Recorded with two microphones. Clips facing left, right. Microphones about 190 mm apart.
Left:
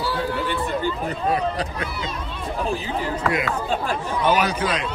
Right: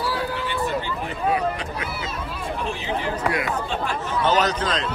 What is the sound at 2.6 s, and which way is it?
Speech, 35° left (ahead or behind).